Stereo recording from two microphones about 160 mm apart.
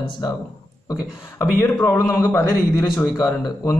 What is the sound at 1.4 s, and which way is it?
Speech, 15° left (ahead or behind).